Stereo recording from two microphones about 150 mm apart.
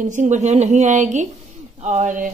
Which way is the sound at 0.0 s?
55° right (ahead or behind).